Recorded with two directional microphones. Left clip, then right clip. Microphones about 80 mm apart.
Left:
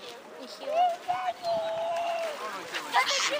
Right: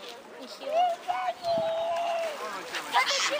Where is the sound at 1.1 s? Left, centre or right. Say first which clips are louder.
Even; right.